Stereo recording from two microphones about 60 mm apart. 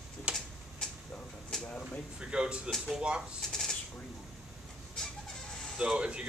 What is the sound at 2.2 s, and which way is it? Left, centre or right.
Speech, centre.